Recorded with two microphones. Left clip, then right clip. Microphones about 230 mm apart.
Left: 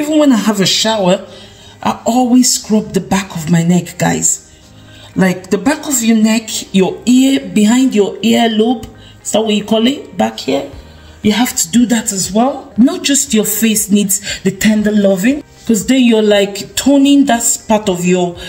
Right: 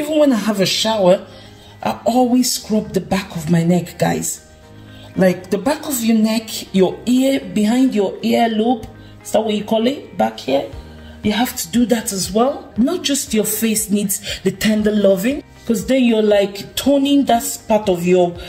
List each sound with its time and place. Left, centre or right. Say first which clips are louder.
0.0 s speech: left 4 dB; centre